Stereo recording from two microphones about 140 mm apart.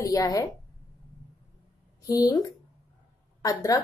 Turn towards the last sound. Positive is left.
turn(degrees=25)  # may be behind; listen again after turning